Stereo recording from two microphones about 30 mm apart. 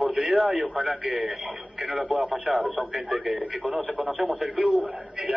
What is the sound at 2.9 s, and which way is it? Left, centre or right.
Speech, centre.